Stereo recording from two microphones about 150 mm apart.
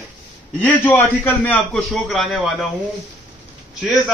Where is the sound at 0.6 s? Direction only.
15° left (ahead or behind).